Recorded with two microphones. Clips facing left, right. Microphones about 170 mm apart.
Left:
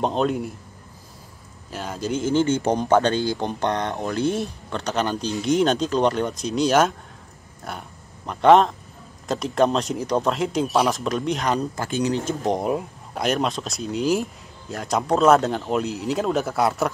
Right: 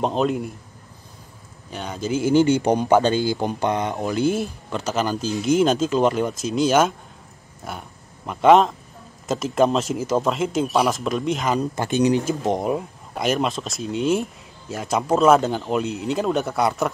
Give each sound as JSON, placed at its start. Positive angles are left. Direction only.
{"t": 0.0, "sound": "speech", "side_deg": 0}
{"t": 1.7, "sound": "speech", "side_deg": 0}
{"t": 2.2, "sound": "speech", "side_deg": -10}
{"t": 11.7, "sound": "speech", "side_deg": -20}
{"t": 12.4, "sound": "speech", "side_deg": 0}